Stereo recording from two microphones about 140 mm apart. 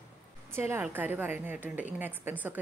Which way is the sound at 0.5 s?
15° right (ahead or behind).